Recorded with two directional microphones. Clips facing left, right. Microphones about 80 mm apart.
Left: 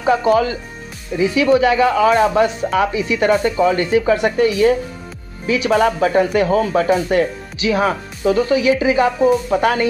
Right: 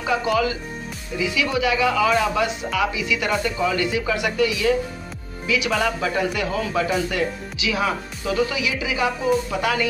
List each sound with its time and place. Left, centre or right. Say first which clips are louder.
0.0 s speech: left 6 dB; left